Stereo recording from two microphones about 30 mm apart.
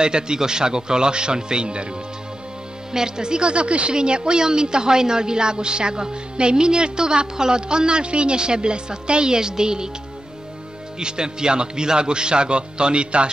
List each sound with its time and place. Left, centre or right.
0.0 s a woman's voice: right
2.9 s a woman's voice: right
11.0 s a woman's voice: right